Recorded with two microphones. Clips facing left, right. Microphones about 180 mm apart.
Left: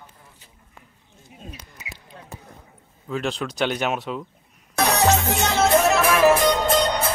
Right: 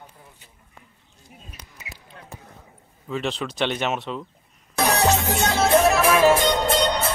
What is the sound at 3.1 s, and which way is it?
Speech, centre (ahead or behind).